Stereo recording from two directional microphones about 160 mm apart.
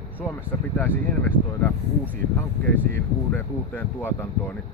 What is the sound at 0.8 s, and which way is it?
Speech, 15° left (ahead or behind).